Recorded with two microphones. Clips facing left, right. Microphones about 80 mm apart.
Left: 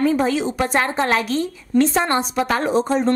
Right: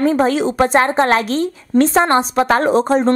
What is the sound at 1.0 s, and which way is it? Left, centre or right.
A woman's voice, right.